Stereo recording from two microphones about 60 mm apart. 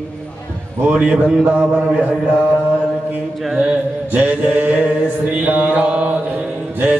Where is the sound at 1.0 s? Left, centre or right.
Centre.